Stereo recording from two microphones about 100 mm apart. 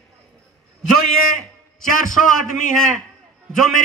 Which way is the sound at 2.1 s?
5° left (ahead or behind).